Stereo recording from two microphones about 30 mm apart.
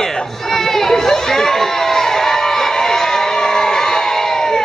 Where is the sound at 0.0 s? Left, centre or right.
Centre.